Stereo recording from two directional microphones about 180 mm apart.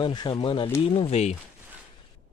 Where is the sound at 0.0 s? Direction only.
25° left (ahead or behind).